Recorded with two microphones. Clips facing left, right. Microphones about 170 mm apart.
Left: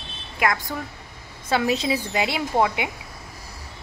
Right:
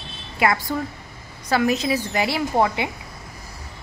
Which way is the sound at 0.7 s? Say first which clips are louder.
Right 5 dB; 15° right (ahead or behind).